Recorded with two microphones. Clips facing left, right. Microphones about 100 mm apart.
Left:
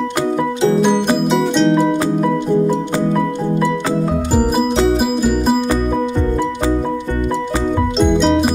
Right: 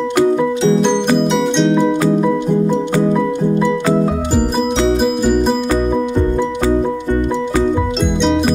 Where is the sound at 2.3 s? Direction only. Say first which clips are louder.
Even; 15° right (ahead or behind).